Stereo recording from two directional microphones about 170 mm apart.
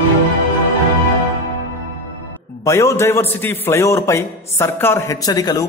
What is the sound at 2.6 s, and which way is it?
A man's voice, 15° left (ahead or behind).